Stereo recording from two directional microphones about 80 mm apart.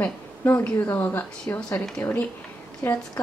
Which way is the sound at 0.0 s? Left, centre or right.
Left.